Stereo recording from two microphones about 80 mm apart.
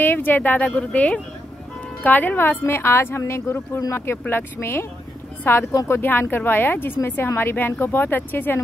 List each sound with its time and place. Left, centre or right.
0.0 s a woman's voice: left